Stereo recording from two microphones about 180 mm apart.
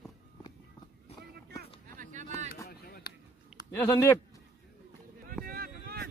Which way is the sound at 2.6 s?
60° left (ahead or behind).